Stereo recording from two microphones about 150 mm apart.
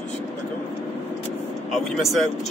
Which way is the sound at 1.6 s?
Centre (ahead or behind).